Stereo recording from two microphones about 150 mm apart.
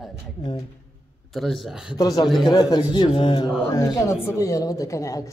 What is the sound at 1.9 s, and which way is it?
A woman's voice, 25° left (ahead or behind).